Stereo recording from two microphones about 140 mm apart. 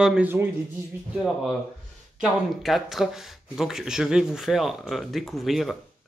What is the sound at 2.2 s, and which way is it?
Fowl, centre (ahead or behind).